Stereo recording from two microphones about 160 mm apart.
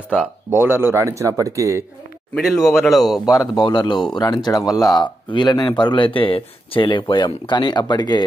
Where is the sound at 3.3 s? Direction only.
30° left (ahead or behind).